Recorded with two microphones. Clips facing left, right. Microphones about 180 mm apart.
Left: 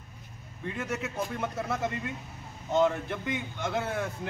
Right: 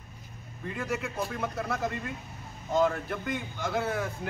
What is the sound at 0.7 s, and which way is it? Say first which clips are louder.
A man's voice: right 1 dB; centre (ahead or behind).